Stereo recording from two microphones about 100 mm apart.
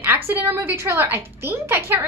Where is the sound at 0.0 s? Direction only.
20° right (ahead or behind).